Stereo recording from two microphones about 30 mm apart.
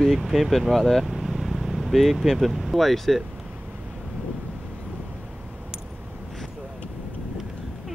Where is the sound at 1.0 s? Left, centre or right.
Centre.